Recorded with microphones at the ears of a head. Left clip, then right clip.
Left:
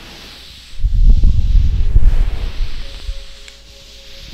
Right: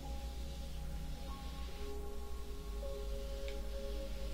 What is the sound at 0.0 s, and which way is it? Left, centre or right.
Music, left.